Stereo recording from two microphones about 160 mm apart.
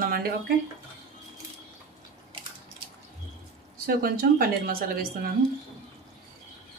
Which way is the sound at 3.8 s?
70° right (ahead or behind).